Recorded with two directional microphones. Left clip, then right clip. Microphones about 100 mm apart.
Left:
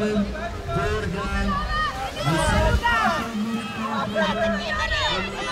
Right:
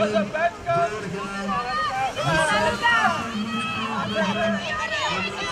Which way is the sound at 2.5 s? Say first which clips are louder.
Even; 15° left (ahead or behind).